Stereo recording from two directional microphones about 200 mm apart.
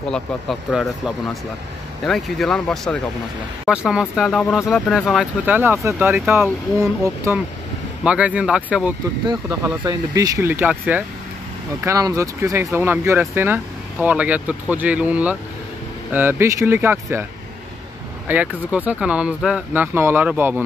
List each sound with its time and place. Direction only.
0.1 s speech: 5° left (ahead or behind)
9.2 s speech: 20° right (ahead or behind)
18.3 s speech: 10° right (ahead or behind)